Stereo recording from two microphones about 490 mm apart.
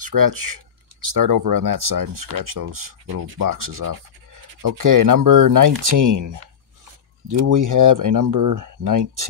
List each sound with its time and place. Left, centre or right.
0.0 s speech: right